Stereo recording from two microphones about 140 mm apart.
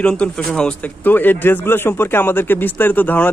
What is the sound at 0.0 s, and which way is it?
Speech, 5° left (ahead or behind).